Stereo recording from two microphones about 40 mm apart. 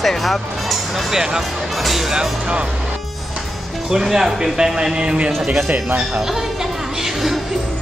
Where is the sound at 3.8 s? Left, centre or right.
Centre.